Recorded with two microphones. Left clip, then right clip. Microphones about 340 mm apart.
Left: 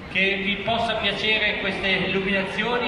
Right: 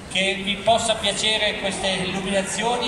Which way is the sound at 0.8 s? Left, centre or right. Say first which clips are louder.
Right 1 dB; right.